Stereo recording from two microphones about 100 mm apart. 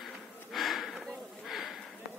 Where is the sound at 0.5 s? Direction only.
Centre (ahead or behind).